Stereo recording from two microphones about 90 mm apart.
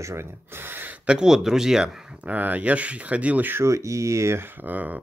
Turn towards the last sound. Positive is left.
turn(degrees=-20)  # may be behind; listen again after turning